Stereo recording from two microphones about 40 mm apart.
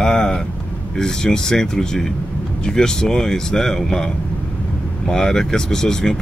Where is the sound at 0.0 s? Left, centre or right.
Centre.